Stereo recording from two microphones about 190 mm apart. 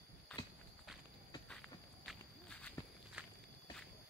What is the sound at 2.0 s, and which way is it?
Walk, 5° left (ahead or behind).